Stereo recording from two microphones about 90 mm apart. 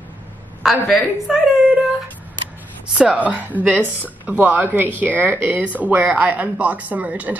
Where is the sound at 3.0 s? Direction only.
15° right (ahead or behind).